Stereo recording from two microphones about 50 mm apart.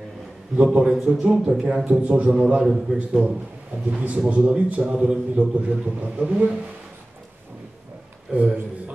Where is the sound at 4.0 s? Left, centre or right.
Right.